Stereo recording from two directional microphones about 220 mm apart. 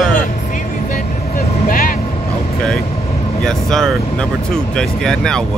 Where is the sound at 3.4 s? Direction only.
Centre (ahead or behind).